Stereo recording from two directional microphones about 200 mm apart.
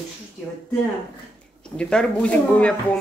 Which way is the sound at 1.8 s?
5° left (ahead or behind).